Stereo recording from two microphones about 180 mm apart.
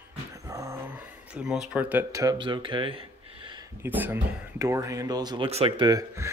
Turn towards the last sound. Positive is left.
turn(degrees=-20)  # may be behind; listen again after turning